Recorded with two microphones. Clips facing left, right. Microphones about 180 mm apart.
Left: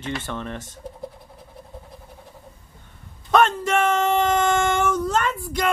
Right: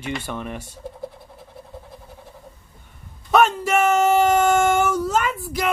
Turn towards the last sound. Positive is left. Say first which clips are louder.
# even
turn(degrees=-5)  # may be behind; listen again after turning